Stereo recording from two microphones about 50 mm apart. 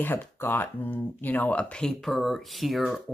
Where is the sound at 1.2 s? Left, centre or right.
Left.